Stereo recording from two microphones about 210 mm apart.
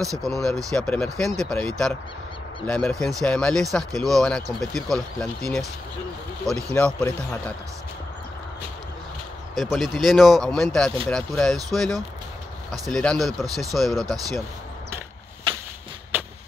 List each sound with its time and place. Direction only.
0.0 s speech: 15° right (ahead or behind)
0.7 s speech: 5° left (ahead or behind)
9.6 s speech: centre (ahead or behind)